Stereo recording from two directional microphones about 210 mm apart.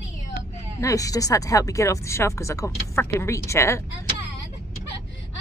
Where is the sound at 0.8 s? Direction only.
15° left (ahead or behind).